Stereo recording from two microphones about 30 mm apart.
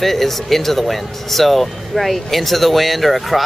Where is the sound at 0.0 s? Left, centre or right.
Centre.